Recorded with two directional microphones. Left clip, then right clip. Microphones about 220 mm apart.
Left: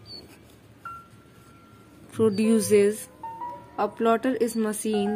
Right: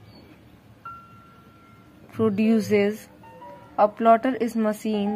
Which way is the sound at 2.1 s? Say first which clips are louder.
Even; 15° left (ahead or behind).